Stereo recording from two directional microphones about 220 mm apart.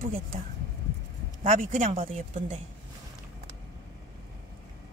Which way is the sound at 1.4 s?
35° right (ahead or behind).